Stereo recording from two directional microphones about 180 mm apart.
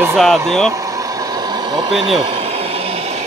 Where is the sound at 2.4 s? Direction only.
35° right (ahead or behind).